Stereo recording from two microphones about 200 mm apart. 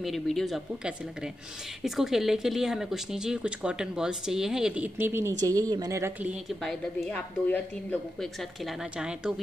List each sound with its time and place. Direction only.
0.0 s speech: centre (ahead or behind)
6.6 s speech: centre (ahead or behind)